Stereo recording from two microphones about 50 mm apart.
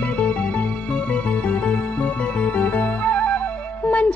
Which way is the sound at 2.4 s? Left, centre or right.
Left.